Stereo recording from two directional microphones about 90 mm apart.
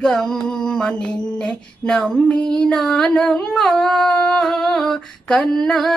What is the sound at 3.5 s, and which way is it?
Humming, 5° left (ahead or behind).